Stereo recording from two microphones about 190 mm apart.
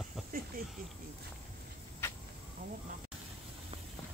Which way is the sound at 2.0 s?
15° left (ahead or behind).